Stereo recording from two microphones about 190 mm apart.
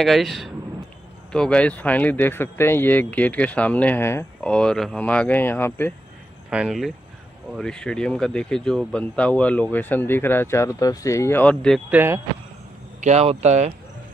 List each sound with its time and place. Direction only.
0.0 s speech: centre (ahead or behind)
6.5 s speech: 5° right (ahead or behind)
11.9 s speech: 10° right (ahead or behind)
13.0 s speech: 35° right (ahead or behind)